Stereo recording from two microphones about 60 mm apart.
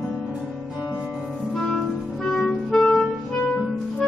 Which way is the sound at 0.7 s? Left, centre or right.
Left.